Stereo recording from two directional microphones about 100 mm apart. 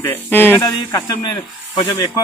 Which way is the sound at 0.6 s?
35° left (ahead or behind).